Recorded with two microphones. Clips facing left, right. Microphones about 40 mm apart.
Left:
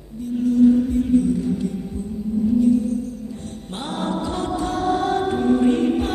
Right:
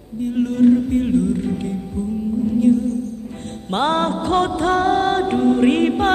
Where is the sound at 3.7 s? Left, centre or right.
Right.